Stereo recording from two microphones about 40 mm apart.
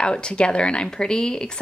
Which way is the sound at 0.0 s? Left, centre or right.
Left.